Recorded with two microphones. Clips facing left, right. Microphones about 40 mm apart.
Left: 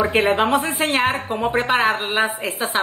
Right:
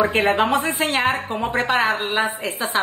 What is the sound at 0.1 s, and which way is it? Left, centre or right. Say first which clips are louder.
Speech: left 1 dB; centre.